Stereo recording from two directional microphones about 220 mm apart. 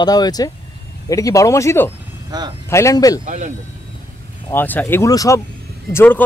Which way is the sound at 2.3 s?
20° right (ahead or behind).